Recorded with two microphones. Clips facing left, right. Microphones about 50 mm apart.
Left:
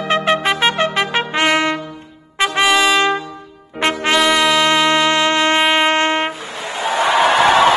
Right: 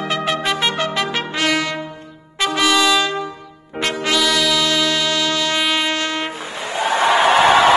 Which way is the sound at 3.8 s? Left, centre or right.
Left.